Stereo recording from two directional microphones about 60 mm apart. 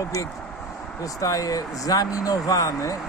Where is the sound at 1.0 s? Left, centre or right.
Left.